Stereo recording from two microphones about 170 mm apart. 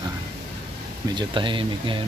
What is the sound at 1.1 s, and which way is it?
Speech, 30° right (ahead or behind).